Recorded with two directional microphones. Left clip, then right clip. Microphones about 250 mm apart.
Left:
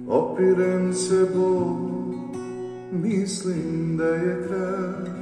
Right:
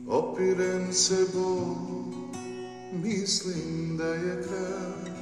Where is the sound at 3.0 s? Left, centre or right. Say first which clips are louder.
Left 2 dB; centre.